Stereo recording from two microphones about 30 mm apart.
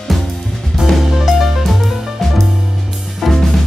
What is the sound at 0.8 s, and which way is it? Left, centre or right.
Music, right.